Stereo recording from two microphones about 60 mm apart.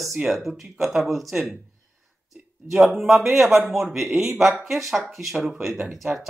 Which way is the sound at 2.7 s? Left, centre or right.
Centre.